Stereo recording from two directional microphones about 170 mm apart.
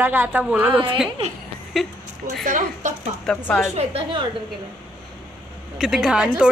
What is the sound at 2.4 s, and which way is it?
Speech, 50° right (ahead or behind).